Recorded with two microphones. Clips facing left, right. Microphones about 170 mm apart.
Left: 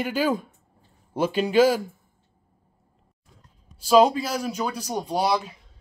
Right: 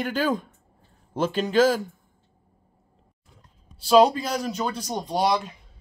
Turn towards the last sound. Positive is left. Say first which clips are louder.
# even
turn(degrees=5)  # may be behind; listen again after turning